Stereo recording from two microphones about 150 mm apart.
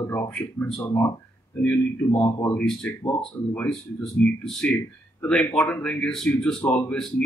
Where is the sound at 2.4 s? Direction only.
10° left (ahead or behind).